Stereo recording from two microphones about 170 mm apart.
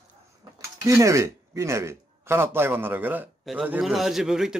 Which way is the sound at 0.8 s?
20° right (ahead or behind).